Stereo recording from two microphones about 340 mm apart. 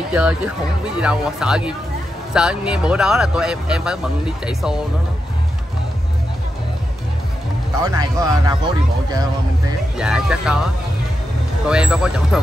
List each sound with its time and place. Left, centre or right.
0.1 s speech: centre
7.8 s speech: centre